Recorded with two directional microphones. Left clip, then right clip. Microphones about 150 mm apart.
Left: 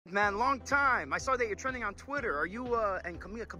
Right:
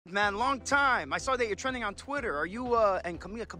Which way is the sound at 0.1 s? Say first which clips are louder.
Right 1 dB; 40° right (ahead or behind).